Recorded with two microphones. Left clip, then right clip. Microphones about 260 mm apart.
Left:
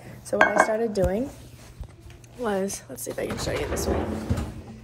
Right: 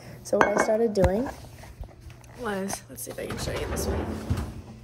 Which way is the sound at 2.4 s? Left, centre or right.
Centre.